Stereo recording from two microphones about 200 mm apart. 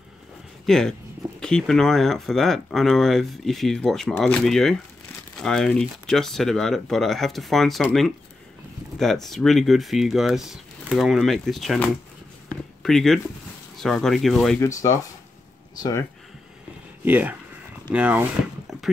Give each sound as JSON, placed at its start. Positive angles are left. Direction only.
{"t": 0.7, "sound": "speech", "side_deg": 0}
{"t": 14.7, "sound": "speech", "side_deg": 15}
{"t": 17.0, "sound": "speech", "side_deg": -10}
{"t": 18.7, "sound": "clip-clop", "side_deg": -5}